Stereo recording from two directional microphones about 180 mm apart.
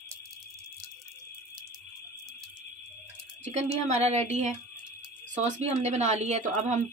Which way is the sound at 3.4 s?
40° right (ahead or behind).